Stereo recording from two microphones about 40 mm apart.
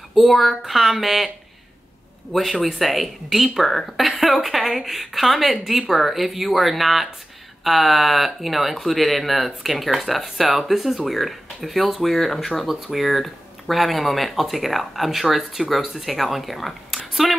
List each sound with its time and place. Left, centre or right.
0.1 s speech: centre
2.3 s speech: centre